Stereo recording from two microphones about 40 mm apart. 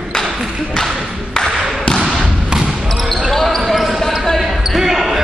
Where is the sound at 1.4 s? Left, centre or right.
Centre.